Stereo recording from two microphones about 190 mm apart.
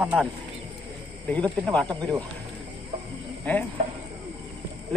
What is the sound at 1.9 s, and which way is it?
Speech, 20° right (ahead or behind).